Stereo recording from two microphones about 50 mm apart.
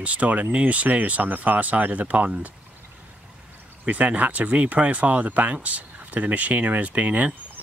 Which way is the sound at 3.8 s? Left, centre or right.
Right.